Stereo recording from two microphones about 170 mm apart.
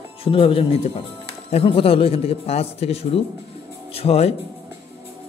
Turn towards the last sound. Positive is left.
turn(degrees=35)  # may be behind; listen again after turning